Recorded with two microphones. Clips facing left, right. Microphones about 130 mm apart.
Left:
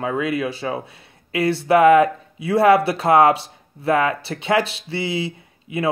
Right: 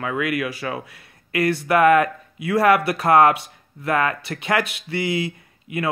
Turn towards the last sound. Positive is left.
turn(degrees=25)  # may be behind; listen again after turning